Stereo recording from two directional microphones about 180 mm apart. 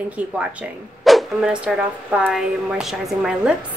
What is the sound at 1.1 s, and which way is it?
A woman's voice, centre (ahead or behind).